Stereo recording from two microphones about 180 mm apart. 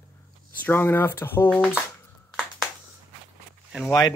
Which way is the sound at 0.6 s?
10° left (ahead or behind).